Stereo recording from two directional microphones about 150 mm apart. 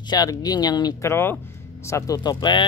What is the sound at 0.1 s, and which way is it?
Speech, 25° left (ahead or behind).